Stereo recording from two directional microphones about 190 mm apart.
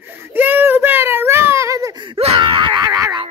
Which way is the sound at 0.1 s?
10° right (ahead or behind).